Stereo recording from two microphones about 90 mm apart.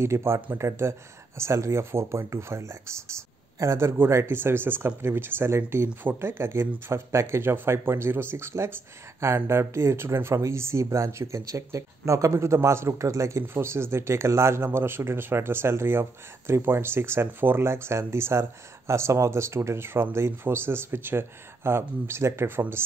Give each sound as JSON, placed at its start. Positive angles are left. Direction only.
{"t": 0.0, "sound": "speech", "side_deg": -30}